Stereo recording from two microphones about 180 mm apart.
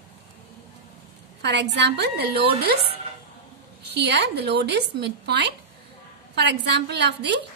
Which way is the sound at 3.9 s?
70° right (ahead or behind).